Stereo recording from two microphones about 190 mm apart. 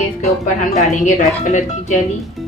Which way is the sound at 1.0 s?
40° left (ahead or behind).